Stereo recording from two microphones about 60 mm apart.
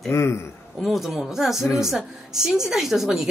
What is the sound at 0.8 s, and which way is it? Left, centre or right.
Speech, centre.